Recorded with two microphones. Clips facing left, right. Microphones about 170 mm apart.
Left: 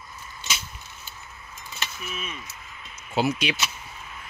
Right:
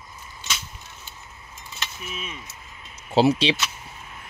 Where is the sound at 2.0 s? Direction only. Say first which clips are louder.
Even; 20° right (ahead or behind).